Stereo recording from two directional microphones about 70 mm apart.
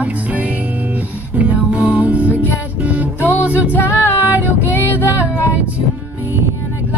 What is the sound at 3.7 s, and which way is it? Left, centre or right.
Music, left.